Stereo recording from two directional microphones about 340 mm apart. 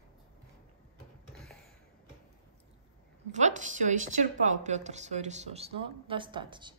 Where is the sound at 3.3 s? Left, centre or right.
Right.